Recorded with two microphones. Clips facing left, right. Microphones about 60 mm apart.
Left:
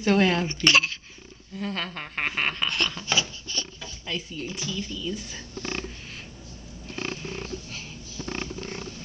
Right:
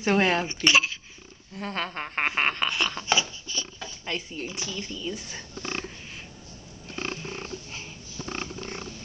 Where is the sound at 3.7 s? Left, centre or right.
Right.